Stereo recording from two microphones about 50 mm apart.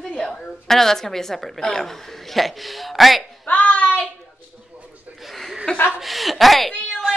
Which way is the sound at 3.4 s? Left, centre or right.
Left.